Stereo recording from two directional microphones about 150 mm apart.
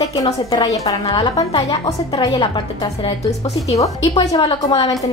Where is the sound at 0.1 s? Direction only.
25° left (ahead or behind).